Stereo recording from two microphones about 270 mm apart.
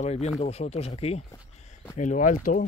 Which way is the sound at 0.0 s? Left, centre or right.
Left.